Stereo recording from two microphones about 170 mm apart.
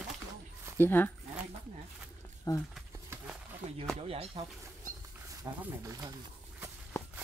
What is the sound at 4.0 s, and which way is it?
Speech, 35° right (ahead or behind).